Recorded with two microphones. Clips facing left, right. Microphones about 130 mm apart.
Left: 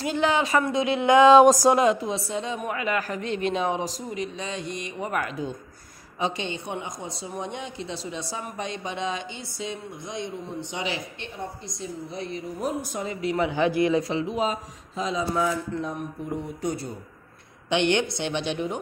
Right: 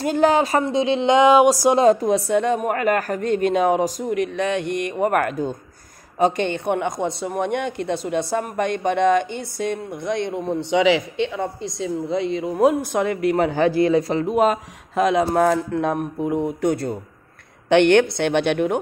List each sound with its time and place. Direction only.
0.0 s speech: 45° right (ahead or behind)
0.7 s speech: 25° right (ahead or behind)
1.8 s a woman's voice: 40° right (ahead or behind); by 18.8 s 65° right (ahead or behind)